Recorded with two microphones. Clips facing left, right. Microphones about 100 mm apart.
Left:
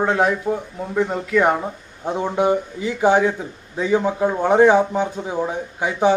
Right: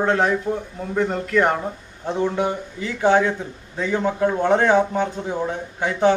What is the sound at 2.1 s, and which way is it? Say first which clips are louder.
Speech: left 3 dB; 15° left (ahead or behind).